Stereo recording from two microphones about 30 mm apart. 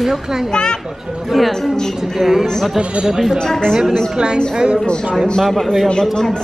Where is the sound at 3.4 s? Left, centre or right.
Left.